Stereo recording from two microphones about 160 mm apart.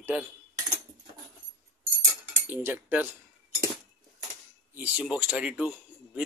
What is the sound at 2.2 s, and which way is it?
Cutlery, 15° right (ahead or behind).